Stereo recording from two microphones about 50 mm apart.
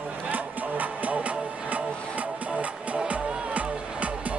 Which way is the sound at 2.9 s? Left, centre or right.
Right.